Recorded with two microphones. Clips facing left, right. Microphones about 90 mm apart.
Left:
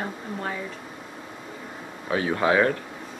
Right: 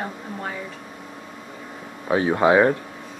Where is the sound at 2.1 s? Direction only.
25° right (ahead or behind).